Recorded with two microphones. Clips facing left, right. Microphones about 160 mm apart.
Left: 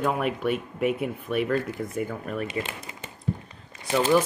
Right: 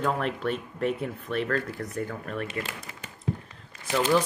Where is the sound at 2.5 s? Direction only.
15° left (ahead or behind).